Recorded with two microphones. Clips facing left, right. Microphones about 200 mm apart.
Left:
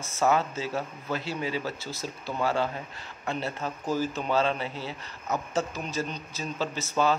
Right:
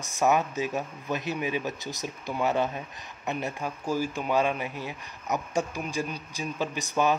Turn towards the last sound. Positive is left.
turn(degrees=-15)  # may be behind; listen again after turning